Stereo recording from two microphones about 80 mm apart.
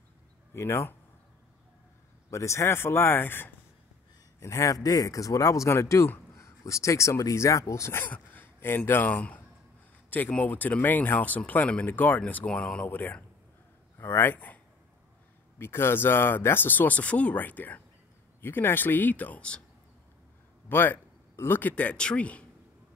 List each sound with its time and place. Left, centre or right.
0.6 s speech: left
2.3 s speech: left
4.4 s speech: left
8.1 s speech: left
15.6 s speech: left
20.6 s speech: left